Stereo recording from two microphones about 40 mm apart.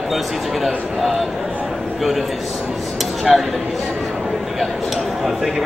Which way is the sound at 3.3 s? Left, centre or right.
Centre.